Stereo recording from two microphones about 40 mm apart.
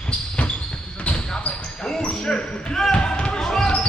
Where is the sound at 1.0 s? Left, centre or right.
Left.